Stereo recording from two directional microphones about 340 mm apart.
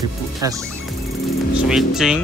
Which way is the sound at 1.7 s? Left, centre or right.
Centre.